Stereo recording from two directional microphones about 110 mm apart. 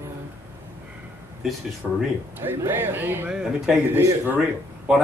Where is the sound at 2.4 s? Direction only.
20° right (ahead or behind).